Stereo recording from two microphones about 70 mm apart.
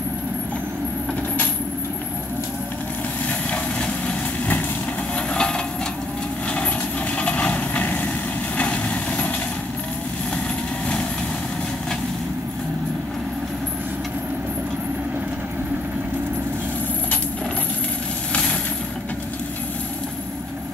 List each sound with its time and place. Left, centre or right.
3.4 s vehicle: centre
5.3 s vehicle: centre
7.2 s vehicle: centre